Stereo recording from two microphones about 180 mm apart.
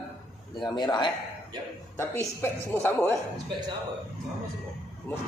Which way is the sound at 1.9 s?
15° left (ahead or behind).